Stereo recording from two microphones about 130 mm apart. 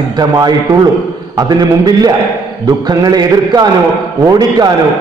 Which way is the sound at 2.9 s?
30° right (ahead or behind).